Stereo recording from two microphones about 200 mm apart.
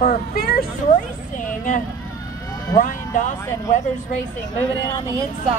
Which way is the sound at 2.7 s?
20° left (ahead or behind).